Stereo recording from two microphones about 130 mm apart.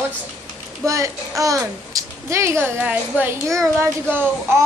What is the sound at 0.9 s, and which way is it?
A child's voice, 25° right (ahead or behind).